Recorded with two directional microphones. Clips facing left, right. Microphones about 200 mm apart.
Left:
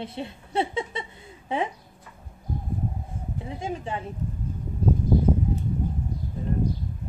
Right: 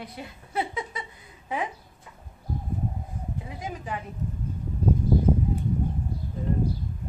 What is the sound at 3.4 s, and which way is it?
Speech, 25° left (ahead or behind).